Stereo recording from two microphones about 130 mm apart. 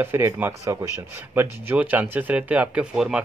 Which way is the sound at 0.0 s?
15° right (ahead or behind).